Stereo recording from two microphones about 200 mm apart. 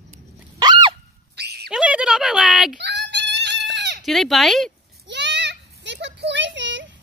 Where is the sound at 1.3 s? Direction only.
55° right (ahead or behind).